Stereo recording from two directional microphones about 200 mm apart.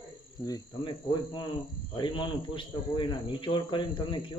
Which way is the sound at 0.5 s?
25° left (ahead or behind).